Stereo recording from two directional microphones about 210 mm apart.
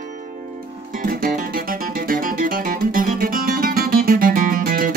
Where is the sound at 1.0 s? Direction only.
40° right (ahead or behind).